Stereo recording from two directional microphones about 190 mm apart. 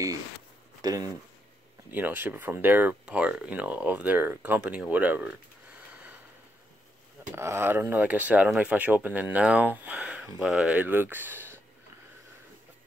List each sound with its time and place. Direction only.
0.8 s speech: 20° right (ahead or behind)
7.3 s speech: 15° right (ahead or behind)